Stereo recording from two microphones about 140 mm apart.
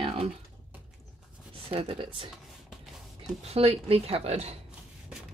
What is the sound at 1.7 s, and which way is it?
Speech, 40° right (ahead or behind).